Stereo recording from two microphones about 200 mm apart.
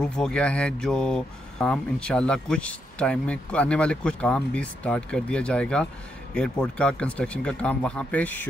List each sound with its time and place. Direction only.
0.0 s speech: 5° left (ahead or behind)